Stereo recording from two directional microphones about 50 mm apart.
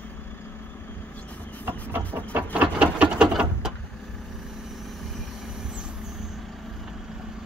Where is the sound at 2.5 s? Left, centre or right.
Right.